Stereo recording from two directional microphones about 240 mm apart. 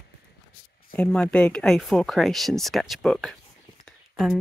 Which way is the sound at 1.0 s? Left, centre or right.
Centre.